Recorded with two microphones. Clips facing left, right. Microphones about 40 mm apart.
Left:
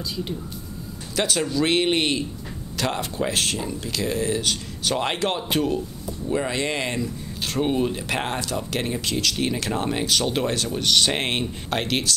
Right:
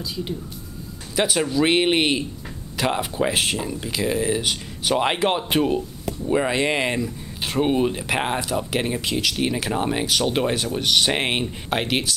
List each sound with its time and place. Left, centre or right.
1.1 s speech: centre